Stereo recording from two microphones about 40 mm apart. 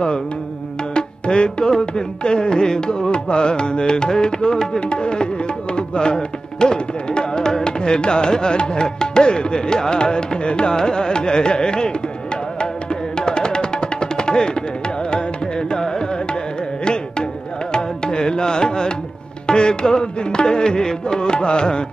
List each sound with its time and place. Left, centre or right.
0.9 s music: left
13.1 s music: centre
15.0 s carnatic music: left
16.8 s music: left